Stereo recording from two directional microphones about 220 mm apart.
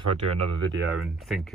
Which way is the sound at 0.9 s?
Centre (ahead or behind).